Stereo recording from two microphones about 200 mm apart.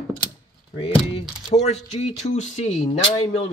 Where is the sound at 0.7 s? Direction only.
25° left (ahead or behind).